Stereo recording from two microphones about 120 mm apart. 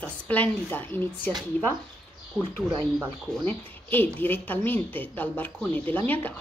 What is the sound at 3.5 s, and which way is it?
A woman's voice, 15° left (ahead or behind).